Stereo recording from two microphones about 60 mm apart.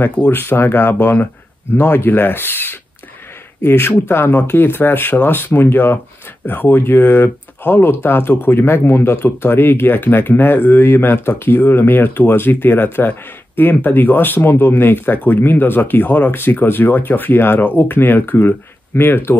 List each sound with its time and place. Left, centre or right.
0.3 s speech: left